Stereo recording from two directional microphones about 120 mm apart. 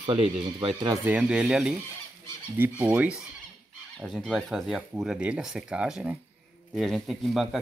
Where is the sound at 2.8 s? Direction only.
10° right (ahead or behind).